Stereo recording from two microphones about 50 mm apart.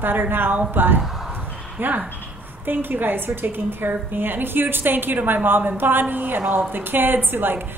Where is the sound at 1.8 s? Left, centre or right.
Right.